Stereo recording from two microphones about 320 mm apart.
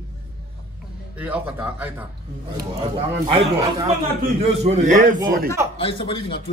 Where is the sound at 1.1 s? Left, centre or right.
Centre.